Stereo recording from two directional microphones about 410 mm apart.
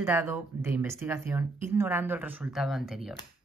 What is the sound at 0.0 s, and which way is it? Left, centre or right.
Speech, centre.